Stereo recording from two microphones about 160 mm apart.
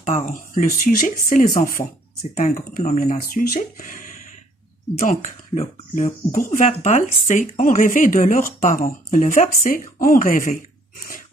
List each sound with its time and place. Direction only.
0.0 s speech: 55° left (ahead or behind)